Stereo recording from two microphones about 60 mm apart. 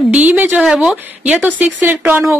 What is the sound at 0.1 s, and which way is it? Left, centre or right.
Speech, right.